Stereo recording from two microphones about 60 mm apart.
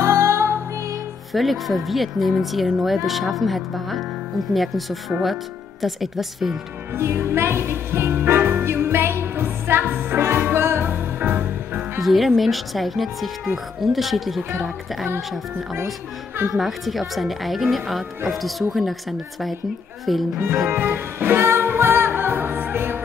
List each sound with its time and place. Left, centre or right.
0.0 s music: right
1.3 s speech: centre
7.0 s music: right
12.0 s speech: centre
16.5 s speech: centre
20.7 s music: right